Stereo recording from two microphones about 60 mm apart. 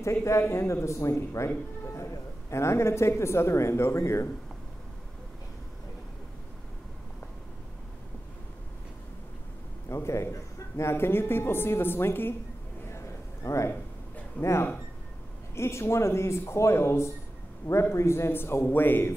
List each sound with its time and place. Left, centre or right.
0.0 s a woman's voice: left
9.8 s speech: left
12.8 s a sound: left
14.4 s speech: left